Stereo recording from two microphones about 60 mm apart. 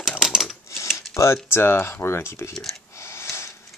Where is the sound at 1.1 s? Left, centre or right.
Left.